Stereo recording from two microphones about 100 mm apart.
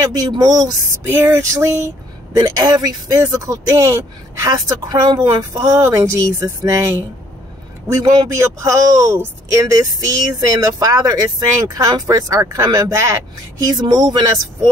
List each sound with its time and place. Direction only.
0.0 s speech: 40° right (ahead or behind)
1.0 s a sound: 25° right (ahead or behind)
2.3 s speech: 35° right (ahead or behind)
8.4 s speech: 30° right (ahead or behind)
13.7 s speech: 45° right (ahead or behind)